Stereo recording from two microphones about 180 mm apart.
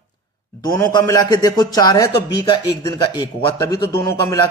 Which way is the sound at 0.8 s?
20° left (ahead or behind).